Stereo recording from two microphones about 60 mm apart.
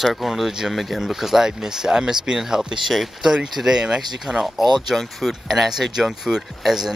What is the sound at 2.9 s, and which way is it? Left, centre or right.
Speech, centre.